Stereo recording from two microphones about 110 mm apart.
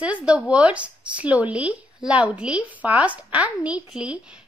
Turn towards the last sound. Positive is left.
turn(degrees=-10)  # may be behind; listen again after turning